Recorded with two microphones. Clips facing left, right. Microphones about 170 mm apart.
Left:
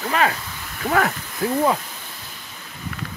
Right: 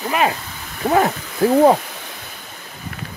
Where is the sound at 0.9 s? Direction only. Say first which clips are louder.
Right 4 dB; 25° right (ahead or behind).